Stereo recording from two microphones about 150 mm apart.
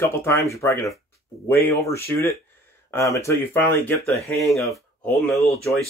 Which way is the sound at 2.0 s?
20° left (ahead or behind).